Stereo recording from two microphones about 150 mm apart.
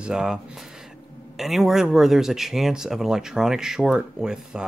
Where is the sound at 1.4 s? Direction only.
Centre (ahead or behind).